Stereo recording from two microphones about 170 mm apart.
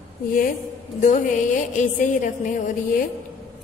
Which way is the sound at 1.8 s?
50° left (ahead or behind).